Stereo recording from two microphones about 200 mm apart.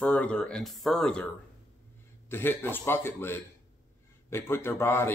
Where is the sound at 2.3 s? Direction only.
10° left (ahead or behind).